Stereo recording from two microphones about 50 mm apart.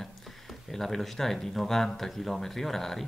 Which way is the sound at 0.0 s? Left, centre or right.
Centre.